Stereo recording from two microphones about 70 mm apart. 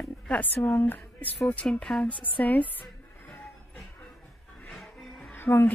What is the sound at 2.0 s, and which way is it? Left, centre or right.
Speech, left.